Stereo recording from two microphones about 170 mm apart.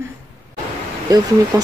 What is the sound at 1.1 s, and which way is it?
Speech, 20° right (ahead or behind).